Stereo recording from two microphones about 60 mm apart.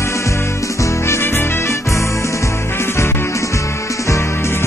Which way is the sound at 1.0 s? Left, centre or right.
Left.